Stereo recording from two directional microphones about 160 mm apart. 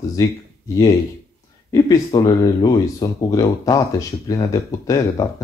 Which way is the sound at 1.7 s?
25° left (ahead or behind).